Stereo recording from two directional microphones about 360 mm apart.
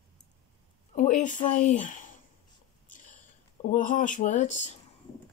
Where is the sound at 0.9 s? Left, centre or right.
Left.